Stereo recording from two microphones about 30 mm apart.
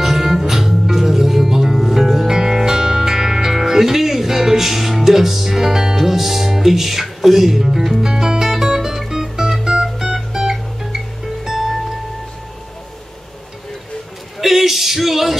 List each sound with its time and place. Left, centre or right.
0.0 s music: centre
2.2 s music: centre
8.1 s music: right; by 11.7 s centre
14.4 s music: centre